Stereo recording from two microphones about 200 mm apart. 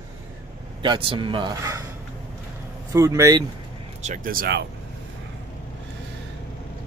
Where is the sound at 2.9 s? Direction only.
15° right (ahead or behind).